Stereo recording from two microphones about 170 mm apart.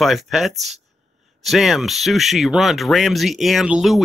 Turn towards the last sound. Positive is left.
turn(degrees=0)  # may be behind; listen again after turning